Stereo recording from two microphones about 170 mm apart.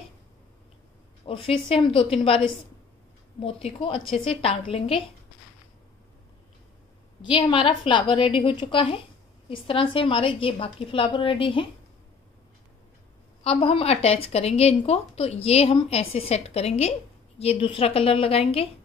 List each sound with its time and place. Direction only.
1.2 s speech: 30° left (ahead or behind)
7.2 s a woman's voice: 30° left (ahead or behind)
13.6 s speech: 35° left (ahead or behind)